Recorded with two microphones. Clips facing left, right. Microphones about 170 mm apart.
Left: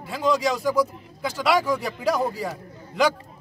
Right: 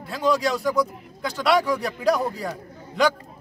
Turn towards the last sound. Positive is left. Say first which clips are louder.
# even
turn(degrees=0)  # may be behind; listen again after turning